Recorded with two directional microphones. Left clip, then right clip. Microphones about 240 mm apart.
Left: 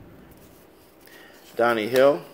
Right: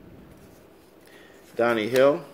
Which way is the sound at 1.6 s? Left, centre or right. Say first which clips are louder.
Left 1 dB; centre.